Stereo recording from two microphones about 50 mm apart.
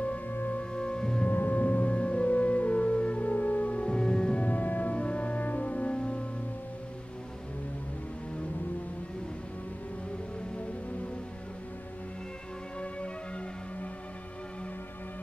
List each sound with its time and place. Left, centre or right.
0.3 s music: left
0.6 s music: centre
1.2 s music: left; by 4.5 s centre
4.5 s music: left